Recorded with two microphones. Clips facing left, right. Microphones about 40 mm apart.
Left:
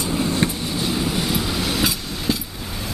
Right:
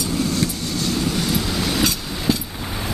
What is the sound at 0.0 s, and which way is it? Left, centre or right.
Train, left.